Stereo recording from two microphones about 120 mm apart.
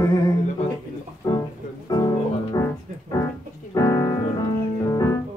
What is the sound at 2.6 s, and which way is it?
Music, 25° left (ahead or behind).